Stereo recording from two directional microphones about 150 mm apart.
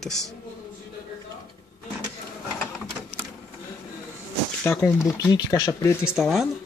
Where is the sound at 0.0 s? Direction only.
5° left (ahead or behind).